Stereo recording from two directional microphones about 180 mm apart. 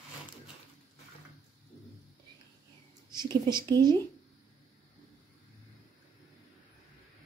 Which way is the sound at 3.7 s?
20° right (ahead or behind).